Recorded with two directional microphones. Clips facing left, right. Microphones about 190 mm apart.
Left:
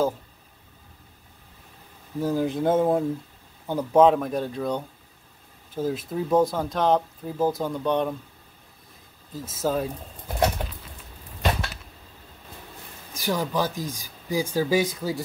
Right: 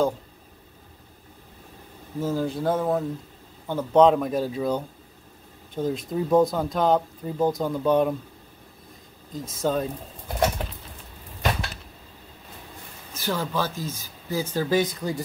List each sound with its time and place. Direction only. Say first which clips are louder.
2.1 s speech: left 2 dB; 15° left (ahead or behind)
3.6 s speech: even; 10° left (ahead or behind); by 8.2 s 5° right (ahead or behind)
9.3 s speech: right 1 dB; 5° left (ahead or behind)
13.1 s speech: left 1 dB; 15° left (ahead or behind)